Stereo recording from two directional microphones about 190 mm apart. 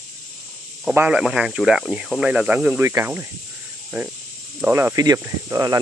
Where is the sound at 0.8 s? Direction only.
5° right (ahead or behind).